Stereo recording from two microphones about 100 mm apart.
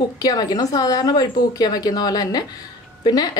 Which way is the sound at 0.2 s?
40° left (ahead or behind).